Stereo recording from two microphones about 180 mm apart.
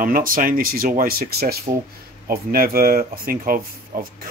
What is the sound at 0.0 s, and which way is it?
Speech, 50° right (ahead or behind).